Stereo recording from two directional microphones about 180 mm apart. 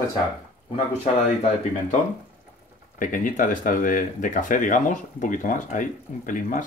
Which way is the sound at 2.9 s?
50° left (ahead or behind).